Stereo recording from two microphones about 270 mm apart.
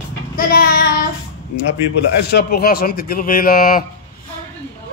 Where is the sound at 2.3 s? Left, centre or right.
Left.